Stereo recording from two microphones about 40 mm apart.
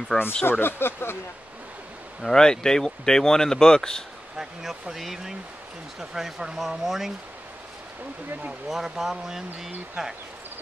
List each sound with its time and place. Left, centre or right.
0.1 s speech: centre
0.5 s speech: left
2.2 s speech: centre
4.4 s speech: centre
8.6 s speech: centre